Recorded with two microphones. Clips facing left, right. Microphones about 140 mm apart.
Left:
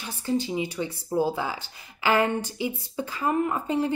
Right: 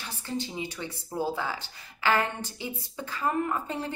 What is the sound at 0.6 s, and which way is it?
A woman's voice, 15° left (ahead or behind).